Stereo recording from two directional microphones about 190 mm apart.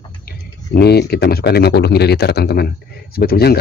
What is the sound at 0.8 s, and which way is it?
Speech, 60° left (ahead or behind).